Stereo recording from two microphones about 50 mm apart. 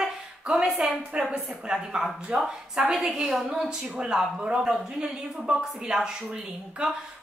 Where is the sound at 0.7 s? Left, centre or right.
Centre.